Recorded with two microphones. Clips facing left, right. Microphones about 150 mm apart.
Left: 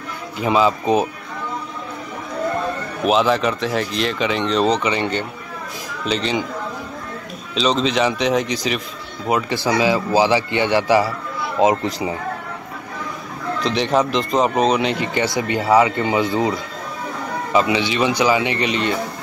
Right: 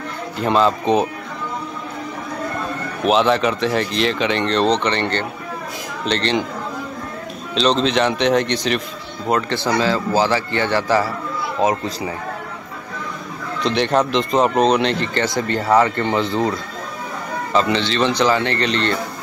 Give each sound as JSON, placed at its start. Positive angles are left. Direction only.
{"t": 0.4, "sound": "speech", "side_deg": 5}
{"t": 3.0, "sound": "speech", "side_deg": 0}
{"t": 7.5, "sound": "speech", "side_deg": 0}
{"t": 9.7, "sound": "speech", "side_deg": 15}
{"t": 13.6, "sound": "speech", "side_deg": 0}
{"t": 17.5, "sound": "speech", "side_deg": 10}